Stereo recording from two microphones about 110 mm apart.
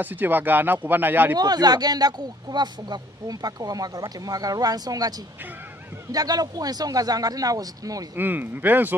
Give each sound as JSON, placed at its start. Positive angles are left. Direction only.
{"t": 0.0, "sound": "speech", "side_deg": -15}
{"t": 1.3, "sound": "speech", "side_deg": -35}
{"t": 6.1, "sound": "speech", "side_deg": -35}
{"t": 8.2, "sound": "speech", "side_deg": -15}